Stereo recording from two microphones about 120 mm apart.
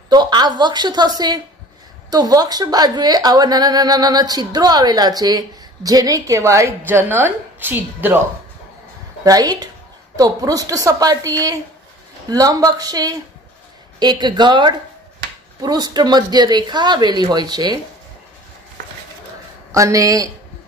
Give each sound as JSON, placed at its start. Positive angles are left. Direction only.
{"t": 0.1, "sound": "a woman's voice", "side_deg": -35}
{"t": 9.2, "sound": "a woman's voice", "side_deg": -30}
{"t": 19.7, "sound": "a woman's voice", "side_deg": -30}